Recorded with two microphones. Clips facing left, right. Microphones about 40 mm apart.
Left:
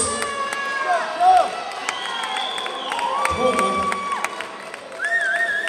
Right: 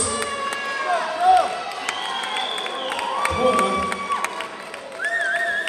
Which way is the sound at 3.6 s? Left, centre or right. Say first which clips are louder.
Left 1 dB; centre.